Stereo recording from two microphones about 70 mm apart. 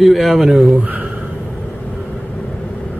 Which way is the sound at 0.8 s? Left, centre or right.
Right.